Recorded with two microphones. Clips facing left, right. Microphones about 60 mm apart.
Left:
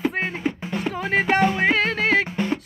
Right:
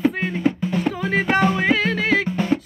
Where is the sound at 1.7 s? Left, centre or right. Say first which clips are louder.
Right 1 dB; left.